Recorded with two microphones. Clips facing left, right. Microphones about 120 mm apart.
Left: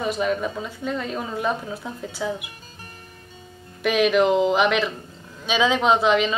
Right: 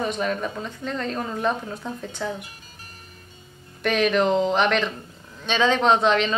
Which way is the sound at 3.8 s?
5° left (ahead or behind).